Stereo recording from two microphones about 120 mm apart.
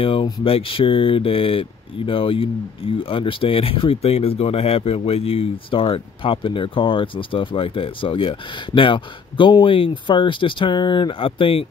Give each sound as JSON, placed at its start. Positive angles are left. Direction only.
{"t": 0.0, "sound": "speech", "side_deg": 45}